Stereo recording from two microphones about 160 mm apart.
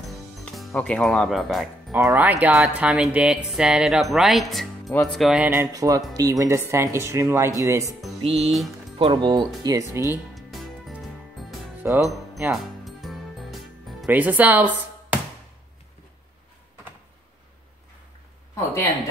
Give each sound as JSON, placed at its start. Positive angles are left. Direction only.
{"t": 0.1, "sound": "music", "side_deg": 0}
{"t": 2.0, "sound": "speech", "side_deg": -10}
{"t": 8.2, "sound": "music", "side_deg": -40}
{"t": 8.9, "sound": "speech", "side_deg": -30}
{"t": 10.3, "sound": "music", "side_deg": 0}
{"t": 11.8, "sound": "speech", "side_deg": -15}
{"t": 12.4, "sound": "music", "side_deg": 0}
{"t": 14.0, "sound": "speech", "side_deg": -10}